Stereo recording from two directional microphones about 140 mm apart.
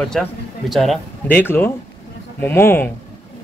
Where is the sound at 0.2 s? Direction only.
Centre (ahead or behind).